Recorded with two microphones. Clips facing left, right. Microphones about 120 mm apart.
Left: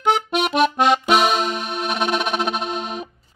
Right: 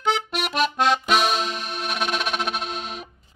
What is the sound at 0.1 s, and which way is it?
Music, 55° left (ahead or behind).